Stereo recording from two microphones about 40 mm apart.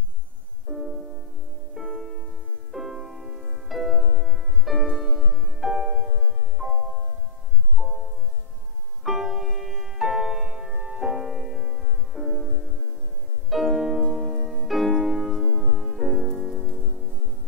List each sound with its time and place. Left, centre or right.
0.7 s music: centre
7.8 s music: right
9.0 s music: centre